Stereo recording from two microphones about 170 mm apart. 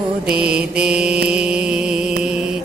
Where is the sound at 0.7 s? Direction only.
5° right (ahead or behind).